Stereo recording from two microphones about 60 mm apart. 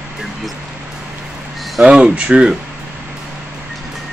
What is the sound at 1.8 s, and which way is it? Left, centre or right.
Speech, centre.